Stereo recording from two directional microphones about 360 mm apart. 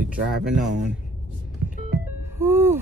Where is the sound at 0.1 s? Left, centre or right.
Centre.